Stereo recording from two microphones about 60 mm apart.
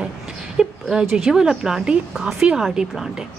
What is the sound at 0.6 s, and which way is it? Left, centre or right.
A woman's voice, centre.